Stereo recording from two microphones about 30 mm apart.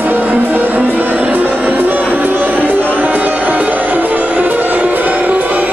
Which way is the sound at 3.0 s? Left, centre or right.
Right.